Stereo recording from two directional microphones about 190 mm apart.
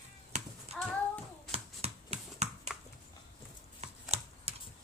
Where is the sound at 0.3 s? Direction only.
35° right (ahead or behind).